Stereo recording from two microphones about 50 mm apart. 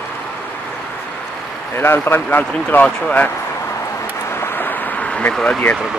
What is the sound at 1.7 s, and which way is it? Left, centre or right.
A man's voice, left.